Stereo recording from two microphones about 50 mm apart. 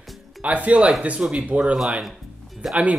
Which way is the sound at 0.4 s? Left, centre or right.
Right.